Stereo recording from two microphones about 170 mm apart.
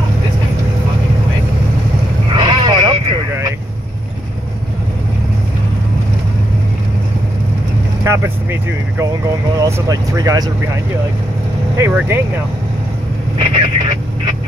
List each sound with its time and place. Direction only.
2.3 s vehicle: 25° right (ahead or behind)
8.0 s vehicle: 15° right (ahead or behind)
9.6 s speech: 20° right (ahead or behind)
11.7 s speech: 15° right (ahead or behind)
13.4 s vehicle: 30° right (ahead or behind)